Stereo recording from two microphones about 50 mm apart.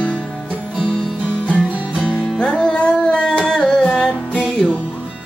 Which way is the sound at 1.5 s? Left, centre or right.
Right.